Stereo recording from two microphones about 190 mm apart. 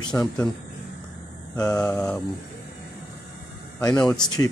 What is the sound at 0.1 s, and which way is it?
Speech, 10° left (ahead or behind).